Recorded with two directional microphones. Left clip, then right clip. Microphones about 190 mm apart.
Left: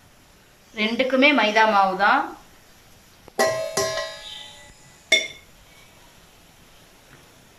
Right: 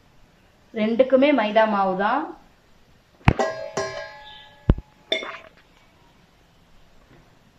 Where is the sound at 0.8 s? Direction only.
30° right (ahead or behind).